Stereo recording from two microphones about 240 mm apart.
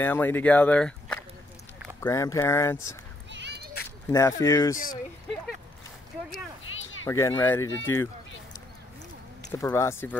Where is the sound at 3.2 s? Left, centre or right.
Right.